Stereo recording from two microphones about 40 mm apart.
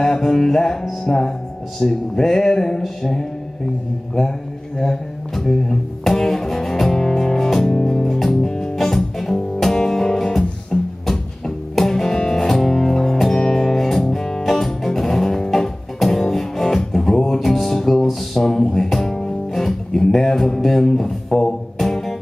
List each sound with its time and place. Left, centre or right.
0.0 s speech: centre
4.7 s music: centre